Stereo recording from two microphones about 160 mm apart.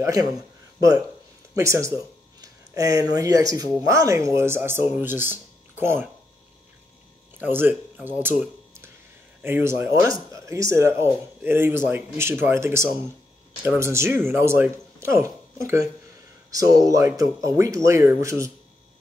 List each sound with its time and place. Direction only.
0.0 s speech: 20° right (ahead or behind)
1.5 s speech: 20° right (ahead or behind)
7.3 s speech: 10° right (ahead or behind)